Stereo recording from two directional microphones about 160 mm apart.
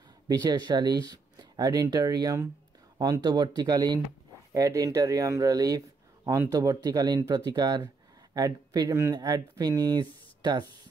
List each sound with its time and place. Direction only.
0.3 s speech: 25° right (ahead or behind)